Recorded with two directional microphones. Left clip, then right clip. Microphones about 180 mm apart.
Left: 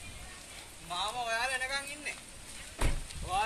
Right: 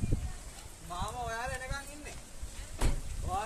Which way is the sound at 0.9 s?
60° right (ahead or behind).